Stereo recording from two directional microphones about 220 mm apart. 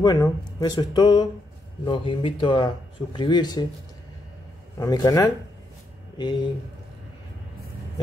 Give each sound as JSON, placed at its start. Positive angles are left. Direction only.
{"t": 0.0, "sound": "speech", "side_deg": 20}
{"t": 4.7, "sound": "speech", "side_deg": 15}